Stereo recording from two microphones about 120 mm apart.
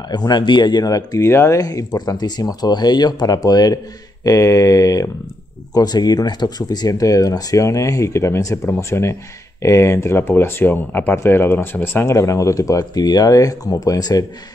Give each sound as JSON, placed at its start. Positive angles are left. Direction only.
{"t": 0.1, "sound": "speech", "side_deg": 35}